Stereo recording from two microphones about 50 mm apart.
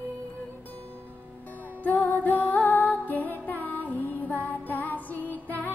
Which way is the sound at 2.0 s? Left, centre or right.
Left.